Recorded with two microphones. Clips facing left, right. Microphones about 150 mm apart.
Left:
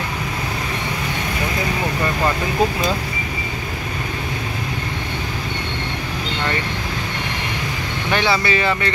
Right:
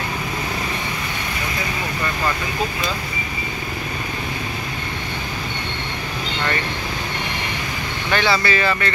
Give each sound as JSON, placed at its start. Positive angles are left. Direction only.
{"t": 8.1, "sound": "speech", "side_deg": 15}